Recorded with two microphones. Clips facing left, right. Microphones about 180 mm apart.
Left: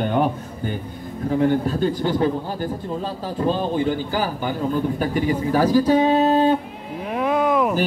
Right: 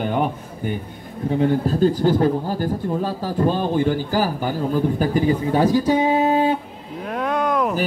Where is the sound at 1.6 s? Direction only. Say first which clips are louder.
Right 4 dB; 35° right (ahead or behind).